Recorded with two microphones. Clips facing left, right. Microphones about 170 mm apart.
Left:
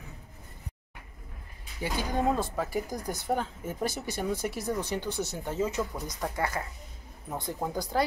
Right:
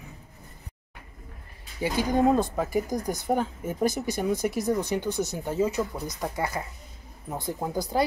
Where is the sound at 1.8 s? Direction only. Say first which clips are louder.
Right 6 dB; 15° right (ahead or behind).